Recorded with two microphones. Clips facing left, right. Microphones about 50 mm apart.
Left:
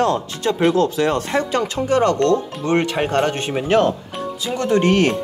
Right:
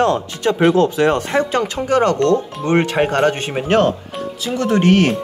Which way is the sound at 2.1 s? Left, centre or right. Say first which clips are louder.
Right 1 dB; centre.